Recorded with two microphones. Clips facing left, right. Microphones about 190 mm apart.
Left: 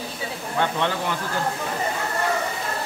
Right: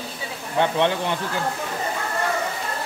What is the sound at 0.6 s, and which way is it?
Speech, 20° right (ahead or behind).